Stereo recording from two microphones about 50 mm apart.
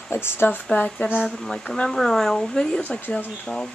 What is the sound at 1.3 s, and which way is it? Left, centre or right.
Speech, centre.